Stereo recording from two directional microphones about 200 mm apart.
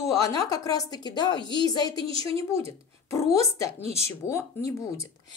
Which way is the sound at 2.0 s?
25° right (ahead or behind).